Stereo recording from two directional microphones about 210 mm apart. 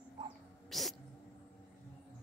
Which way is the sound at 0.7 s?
Centre (ahead or behind).